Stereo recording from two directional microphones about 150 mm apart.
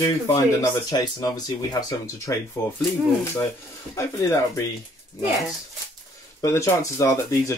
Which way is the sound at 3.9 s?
20° left (ahead or behind).